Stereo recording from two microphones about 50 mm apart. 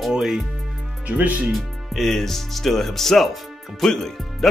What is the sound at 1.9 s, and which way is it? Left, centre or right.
Speech, centre.